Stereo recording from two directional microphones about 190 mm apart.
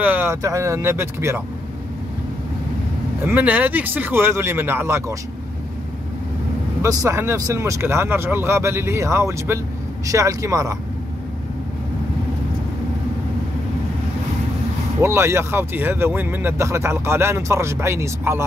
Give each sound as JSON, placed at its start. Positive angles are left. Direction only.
{"t": 0.0, "sound": "speech", "side_deg": -10}
{"t": 3.3, "sound": "speech", "side_deg": -10}
{"t": 6.8, "sound": "speech", "side_deg": -15}
{"t": 15.0, "sound": "speech", "side_deg": -15}